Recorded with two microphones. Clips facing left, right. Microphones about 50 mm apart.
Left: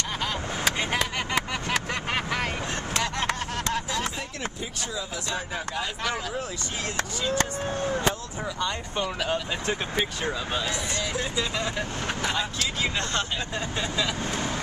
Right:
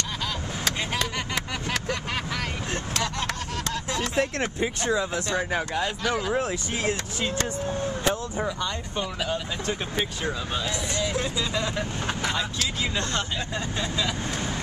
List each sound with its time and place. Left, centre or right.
0.7 s vehicle: centre
1.9 s vehicle: left
4.2 s speech: right
7.3 s speech: left
9.3 s speech: centre
12.8 s speech: left
13.7 s speech: centre